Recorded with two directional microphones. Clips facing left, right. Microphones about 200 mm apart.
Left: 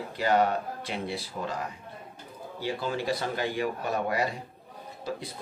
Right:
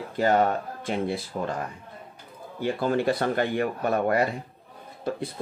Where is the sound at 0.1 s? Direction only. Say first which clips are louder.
Right 3 dB; 45° right (ahead or behind).